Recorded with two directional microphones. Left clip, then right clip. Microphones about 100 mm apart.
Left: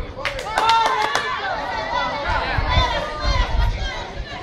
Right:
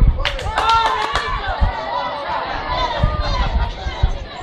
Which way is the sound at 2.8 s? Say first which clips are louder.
Right 1 dB; 25° left (ahead or behind).